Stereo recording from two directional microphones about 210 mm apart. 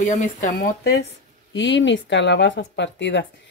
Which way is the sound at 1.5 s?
60° left (ahead or behind).